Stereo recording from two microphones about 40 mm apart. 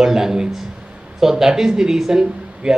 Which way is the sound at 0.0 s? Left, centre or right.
Centre.